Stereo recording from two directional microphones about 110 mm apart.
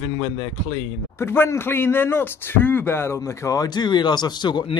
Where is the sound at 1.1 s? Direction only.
20° left (ahead or behind); by 4.7 s 40° left (ahead or behind).